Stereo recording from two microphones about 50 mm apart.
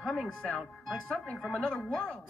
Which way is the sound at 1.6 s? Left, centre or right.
Centre.